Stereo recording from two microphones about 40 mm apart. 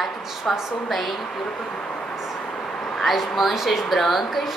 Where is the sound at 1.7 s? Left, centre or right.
Left.